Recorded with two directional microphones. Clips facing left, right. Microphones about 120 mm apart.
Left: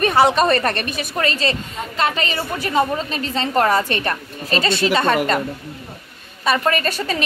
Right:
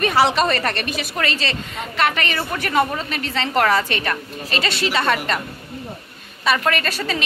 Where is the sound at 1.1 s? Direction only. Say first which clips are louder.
Left 5 dB; 35° left (ahead or behind).